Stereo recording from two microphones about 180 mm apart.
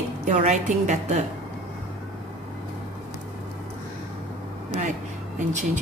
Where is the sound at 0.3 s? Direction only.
40° right (ahead or behind).